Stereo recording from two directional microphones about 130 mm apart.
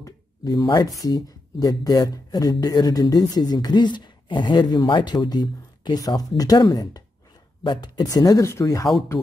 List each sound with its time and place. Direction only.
0.0 s speech: 30° left (ahead or behind)